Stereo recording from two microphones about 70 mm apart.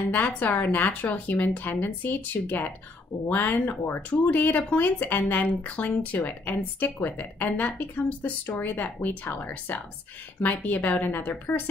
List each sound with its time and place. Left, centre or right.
0.1 s a woman's voice: left